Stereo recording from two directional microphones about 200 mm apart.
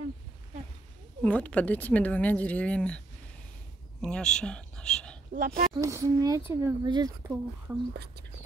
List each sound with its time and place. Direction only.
1.2 s a woman's voice: 5° left (ahead or behind)
4.0 s speech: 5° left (ahead or behind)
5.3 s speech: 40° right (ahead or behind)
5.7 s speech: 15° right (ahead or behind)
7.9 s speech: 55° right (ahead or behind)